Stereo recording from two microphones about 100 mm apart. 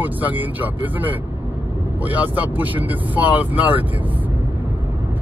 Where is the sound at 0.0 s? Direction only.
15° right (ahead or behind).